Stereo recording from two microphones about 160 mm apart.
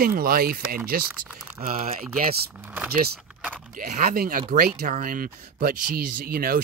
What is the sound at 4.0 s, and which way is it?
Speech, 65° right (ahead or behind).